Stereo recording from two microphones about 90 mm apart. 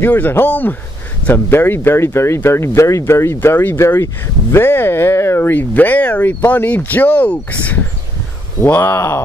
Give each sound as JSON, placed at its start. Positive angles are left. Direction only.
{"t": 0.0, "sound": "speech", "side_deg": 20}
{"t": 5.5, "sound": "speech", "side_deg": 20}